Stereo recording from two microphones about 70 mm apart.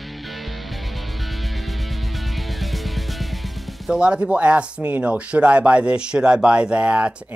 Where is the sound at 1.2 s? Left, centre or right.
Centre.